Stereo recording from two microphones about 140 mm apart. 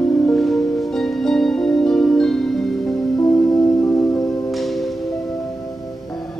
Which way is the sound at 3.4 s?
25° left (ahead or behind).